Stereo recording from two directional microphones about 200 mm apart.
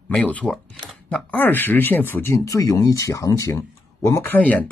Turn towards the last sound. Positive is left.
turn(degrees=10)  # may be behind; listen again after turning